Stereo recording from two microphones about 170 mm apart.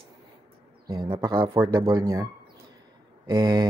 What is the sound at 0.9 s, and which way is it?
Speech, 25° right (ahead or behind).